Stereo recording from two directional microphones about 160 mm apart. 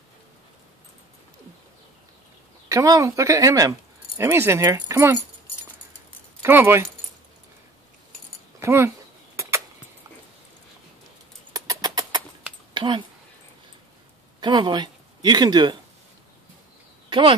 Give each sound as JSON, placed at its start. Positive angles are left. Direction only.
{"t": 2.7, "sound": "speech", "side_deg": -20}
{"t": 6.4, "sound": "speech", "side_deg": -15}
{"t": 8.5, "sound": "speech", "side_deg": -15}
{"t": 11.5, "sound": "a sound", "side_deg": -25}
{"t": 14.4, "sound": "speech", "side_deg": -30}
{"t": 17.1, "sound": "speech", "side_deg": -35}